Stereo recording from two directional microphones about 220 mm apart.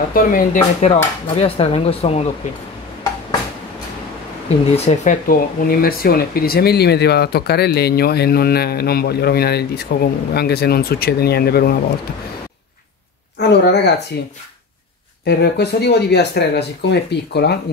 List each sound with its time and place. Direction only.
0.1 s speech: 40° left (ahead or behind)
1.2 s speech: 25° left (ahead or behind)
4.7 s speech: 30° left (ahead or behind)
13.4 s speech: 50° left (ahead or behind)
15.2 s speech: 50° left (ahead or behind)